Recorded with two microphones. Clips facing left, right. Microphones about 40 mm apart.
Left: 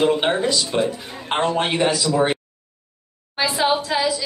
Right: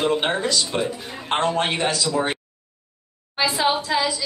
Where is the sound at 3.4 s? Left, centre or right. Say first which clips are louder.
Left 1 dB; centre.